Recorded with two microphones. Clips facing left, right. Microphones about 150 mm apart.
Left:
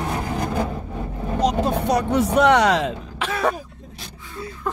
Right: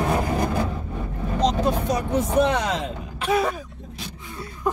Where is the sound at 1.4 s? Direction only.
10° left (ahead or behind).